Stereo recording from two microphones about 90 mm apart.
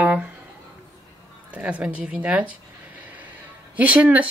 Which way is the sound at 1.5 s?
15° right (ahead or behind).